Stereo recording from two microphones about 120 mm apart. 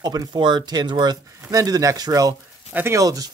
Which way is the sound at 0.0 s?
35° right (ahead or behind).